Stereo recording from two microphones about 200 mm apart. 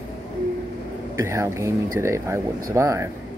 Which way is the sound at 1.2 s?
15° right (ahead or behind).